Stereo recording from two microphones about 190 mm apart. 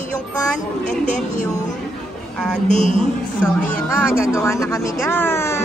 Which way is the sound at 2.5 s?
40° left (ahead or behind).